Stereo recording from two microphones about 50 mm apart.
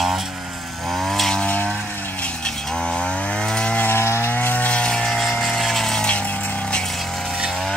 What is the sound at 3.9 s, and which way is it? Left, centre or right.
Wood, left.